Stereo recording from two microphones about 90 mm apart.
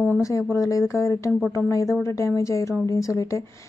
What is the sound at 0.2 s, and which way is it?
A woman's voice, 35° left (ahead or behind).